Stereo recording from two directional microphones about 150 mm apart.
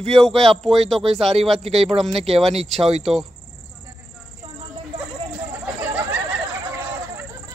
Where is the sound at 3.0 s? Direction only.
Centre (ahead or behind).